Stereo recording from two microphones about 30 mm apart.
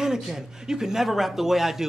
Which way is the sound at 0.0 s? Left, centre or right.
Centre.